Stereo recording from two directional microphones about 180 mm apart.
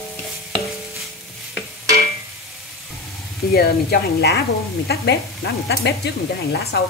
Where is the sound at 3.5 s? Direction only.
60° left (ahead or behind).